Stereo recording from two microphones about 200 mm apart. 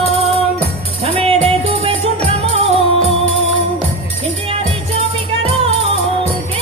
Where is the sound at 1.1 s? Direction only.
30° right (ahead or behind).